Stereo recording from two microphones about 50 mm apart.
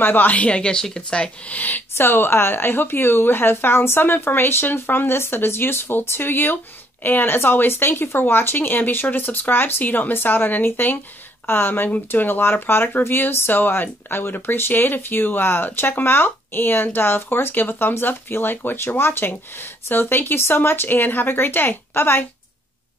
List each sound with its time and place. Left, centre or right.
0.0 s a woman's voice: left; by 0.8 s centre
1.5 s speech: left
2.0 s speech: left